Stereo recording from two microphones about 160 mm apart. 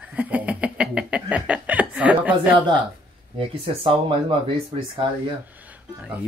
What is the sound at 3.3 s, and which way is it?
Speech, 35° right (ahead or behind).